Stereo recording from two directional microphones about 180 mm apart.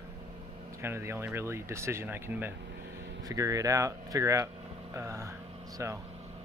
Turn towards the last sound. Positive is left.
turn(degrees=-15)  # may be behind; listen again after turning